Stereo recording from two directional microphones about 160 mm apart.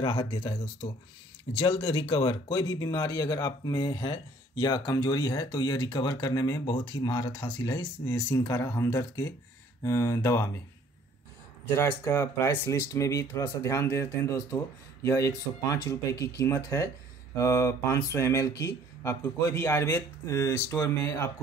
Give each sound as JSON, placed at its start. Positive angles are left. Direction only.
{"t": 0.0, "sound": "speech", "side_deg": 30}
{"t": 11.7, "sound": "speech", "side_deg": 15}